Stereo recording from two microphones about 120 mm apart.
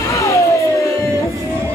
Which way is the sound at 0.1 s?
25° left (ahead or behind).